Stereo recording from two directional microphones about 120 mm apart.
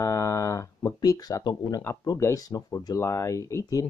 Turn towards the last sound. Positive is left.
turn(degrees=25)  # may be behind; listen again after turning